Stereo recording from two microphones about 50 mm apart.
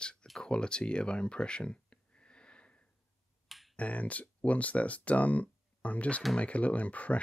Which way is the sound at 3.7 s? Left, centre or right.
Left.